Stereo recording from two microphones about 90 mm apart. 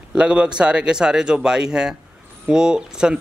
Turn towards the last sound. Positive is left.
turn(degrees=-10)  # may be behind; listen again after turning